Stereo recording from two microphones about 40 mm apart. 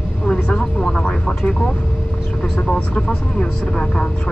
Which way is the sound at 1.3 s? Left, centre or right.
Centre.